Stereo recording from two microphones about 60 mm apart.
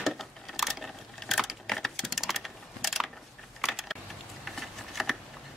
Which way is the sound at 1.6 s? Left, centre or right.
Centre.